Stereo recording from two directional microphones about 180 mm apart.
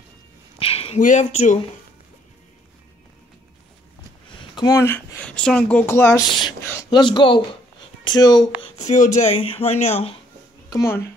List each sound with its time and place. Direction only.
0.6 s a sound: 30° left (ahead or behind)
0.9 s speech: 40° left (ahead or behind)
4.4 s speech: 20° left (ahead or behind)
6.6 s a sound: 10° left (ahead or behind)
6.9 s speech: 25° left (ahead or behind)
8.7 s speech: 40° left (ahead or behind)
10.7 s speech: 15° left (ahead or behind)